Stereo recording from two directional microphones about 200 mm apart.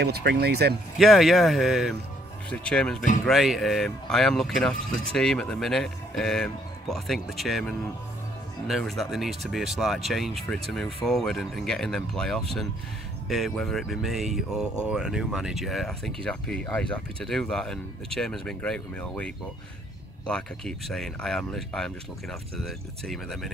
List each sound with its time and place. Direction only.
0.0 s speech: 55° right (ahead or behind)
0.9 s speech: centre (ahead or behind)
23.0 s speech: centre (ahead or behind)